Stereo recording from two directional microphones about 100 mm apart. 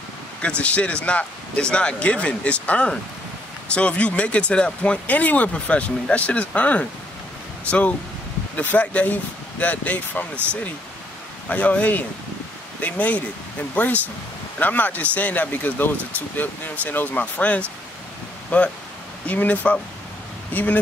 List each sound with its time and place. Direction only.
0.4 s speech: 10° left (ahead or behind)
8.5 s speech: 15° left (ahead or behind)
11.4 s speech: 15° left (ahead or behind)